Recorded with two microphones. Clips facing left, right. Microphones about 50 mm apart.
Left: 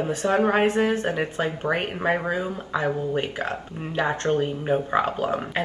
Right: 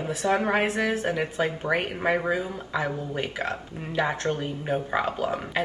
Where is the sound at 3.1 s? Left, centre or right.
Left.